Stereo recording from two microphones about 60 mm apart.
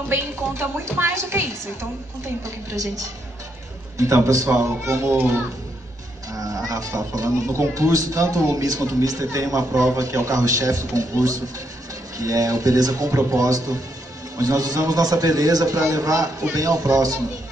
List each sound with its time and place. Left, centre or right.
0.1 s a woman's voice: right
4.8 s a woman's voice: right
6.3 s music: right
6.7 s a man's voice: right
12.2 s a man's voice: right
14.4 s a man's voice: right